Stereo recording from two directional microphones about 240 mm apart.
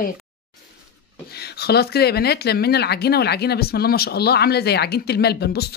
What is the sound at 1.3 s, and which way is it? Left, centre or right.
Speech, left.